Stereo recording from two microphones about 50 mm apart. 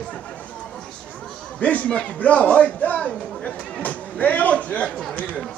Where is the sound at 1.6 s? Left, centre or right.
Left.